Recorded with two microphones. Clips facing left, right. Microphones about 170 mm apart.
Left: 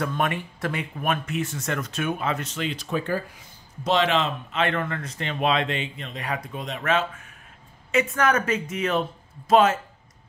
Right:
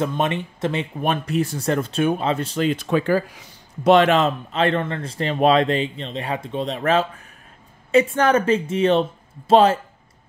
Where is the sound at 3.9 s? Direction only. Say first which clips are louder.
Right 7 dB; 50° right (ahead or behind); by 9.8 s 30° right (ahead or behind).